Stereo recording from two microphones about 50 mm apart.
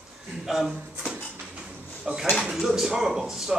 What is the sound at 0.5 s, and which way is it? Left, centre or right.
Speech, centre.